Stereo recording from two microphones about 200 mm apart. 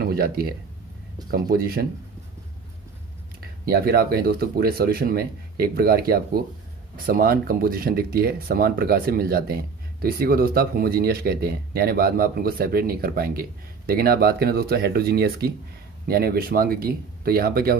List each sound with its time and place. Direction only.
0.0 s speech: 50° right (ahead or behind)
3.6 s speech: 50° right (ahead or behind)